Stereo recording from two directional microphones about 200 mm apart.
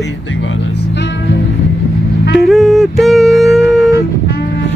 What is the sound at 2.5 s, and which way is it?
Speech, centre (ahead or behind).